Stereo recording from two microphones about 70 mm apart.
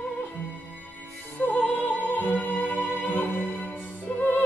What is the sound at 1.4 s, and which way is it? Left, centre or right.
Music, centre.